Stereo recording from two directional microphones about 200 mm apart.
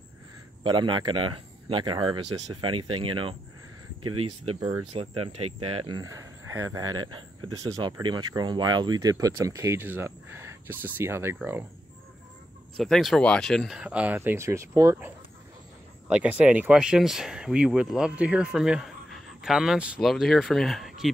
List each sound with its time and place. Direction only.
0.7 s speech: 25° right (ahead or behind)
4.0 s speech: 90° right
4.6 s speech: 20° right (ahead or behind)
12.7 s speech: centre (ahead or behind)